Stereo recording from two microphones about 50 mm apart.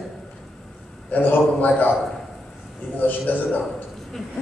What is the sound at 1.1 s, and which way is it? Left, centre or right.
Speech, left.